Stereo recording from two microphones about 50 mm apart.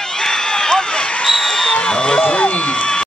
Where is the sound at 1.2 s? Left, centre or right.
Centre; by 3.0 s left.